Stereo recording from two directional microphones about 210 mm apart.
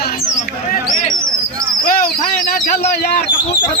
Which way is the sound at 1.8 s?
45° left (ahead or behind).